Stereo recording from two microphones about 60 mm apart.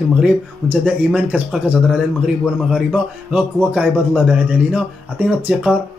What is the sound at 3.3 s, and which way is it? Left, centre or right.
A man's voice, centre.